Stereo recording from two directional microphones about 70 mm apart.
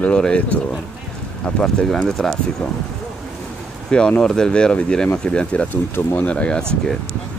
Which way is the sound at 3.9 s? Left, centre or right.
Centre.